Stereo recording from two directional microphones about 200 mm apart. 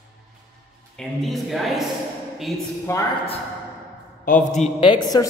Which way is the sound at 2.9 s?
15° left (ahead or behind).